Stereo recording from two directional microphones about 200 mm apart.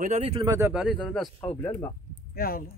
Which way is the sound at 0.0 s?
35° right (ahead or behind).